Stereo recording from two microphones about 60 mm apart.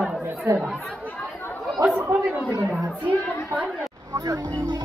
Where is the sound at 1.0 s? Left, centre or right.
Left.